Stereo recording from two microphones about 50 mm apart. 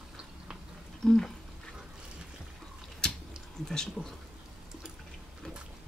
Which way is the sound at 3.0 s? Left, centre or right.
Centre.